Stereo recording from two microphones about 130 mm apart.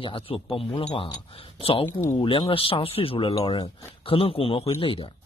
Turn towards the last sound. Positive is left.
turn(degrees=45)  # may be behind; listen again after turning